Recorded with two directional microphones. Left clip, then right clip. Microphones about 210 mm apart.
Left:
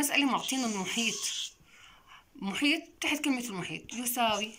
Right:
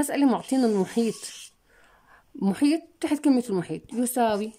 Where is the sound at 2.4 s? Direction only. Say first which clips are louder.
Right 5 dB; 45° right (ahead or behind).